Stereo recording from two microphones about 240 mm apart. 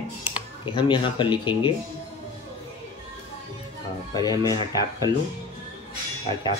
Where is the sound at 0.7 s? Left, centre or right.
Centre.